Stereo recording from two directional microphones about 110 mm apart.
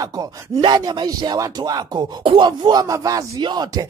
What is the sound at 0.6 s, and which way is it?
Speech, 45° right (ahead or behind).